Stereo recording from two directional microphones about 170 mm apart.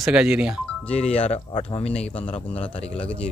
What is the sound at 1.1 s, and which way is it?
Speech, 35° left (ahead or behind).